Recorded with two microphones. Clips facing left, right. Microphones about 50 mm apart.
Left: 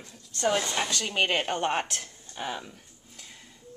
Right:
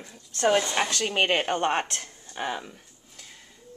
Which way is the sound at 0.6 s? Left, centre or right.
Centre.